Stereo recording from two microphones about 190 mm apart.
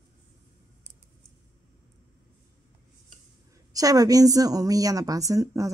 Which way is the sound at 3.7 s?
20° right (ahead or behind).